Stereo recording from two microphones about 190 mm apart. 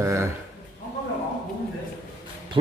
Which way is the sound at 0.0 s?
15° right (ahead or behind).